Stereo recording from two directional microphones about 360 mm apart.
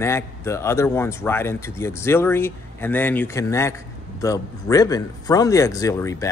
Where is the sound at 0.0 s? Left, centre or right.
Centre.